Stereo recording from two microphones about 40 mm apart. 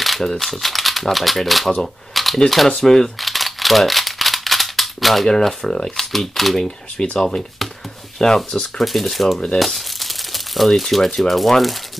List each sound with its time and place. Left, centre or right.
0.0 s a sound: centre
0.3 s speech: centre
2.1 s camera: centre
2.8 s speech: centre
7.0 s speech: centre
8.7 s speech: centre
9.6 s crumpling: centre
10.7 s speech: centre